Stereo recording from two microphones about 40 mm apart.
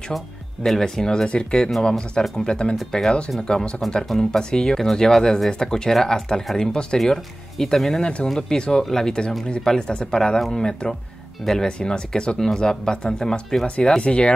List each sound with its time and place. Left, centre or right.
0.7 s speech: centre
2.7 s speech: centre
3.3 s speech: centre
7.0 s speech: centre
13.8 s speech: left